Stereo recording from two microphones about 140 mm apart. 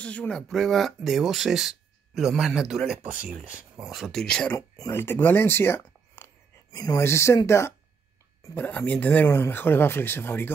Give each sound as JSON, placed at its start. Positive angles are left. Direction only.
{"t": 0.0, "sound": "speech", "side_deg": 10}
{"t": 4.6, "sound": "speech", "side_deg": 20}
{"t": 6.7, "sound": "speech", "side_deg": 25}